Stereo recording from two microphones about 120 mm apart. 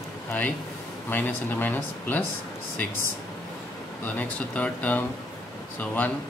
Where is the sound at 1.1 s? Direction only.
15° left (ahead or behind).